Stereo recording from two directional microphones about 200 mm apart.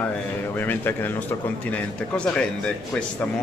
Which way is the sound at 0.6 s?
10° left (ahead or behind).